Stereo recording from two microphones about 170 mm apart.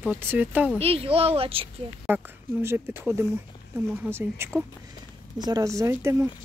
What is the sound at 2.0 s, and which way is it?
Speech, 10° right (ahead or behind).